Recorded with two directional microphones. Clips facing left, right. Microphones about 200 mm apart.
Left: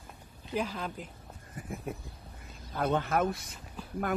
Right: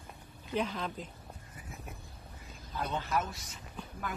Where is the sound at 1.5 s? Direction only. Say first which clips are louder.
Left 11 dB; 55° left (ahead or behind).